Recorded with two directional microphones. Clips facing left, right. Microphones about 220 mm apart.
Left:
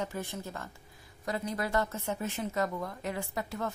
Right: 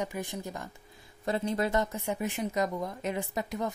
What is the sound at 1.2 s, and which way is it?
Speech, 25° right (ahead or behind).